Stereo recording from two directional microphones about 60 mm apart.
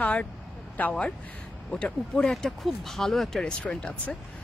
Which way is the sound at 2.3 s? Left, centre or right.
Centre.